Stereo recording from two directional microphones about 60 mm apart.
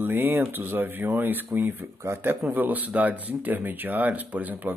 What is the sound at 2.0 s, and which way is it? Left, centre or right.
Speech, right.